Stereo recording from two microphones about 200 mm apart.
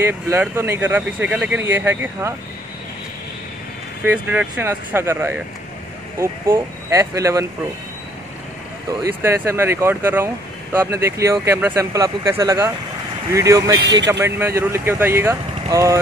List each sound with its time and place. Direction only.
0.0 s speech: 10° right (ahead or behind)
4.0 s speech: 5° right (ahead or behind)
9.0 s speech: 10° right (ahead or behind)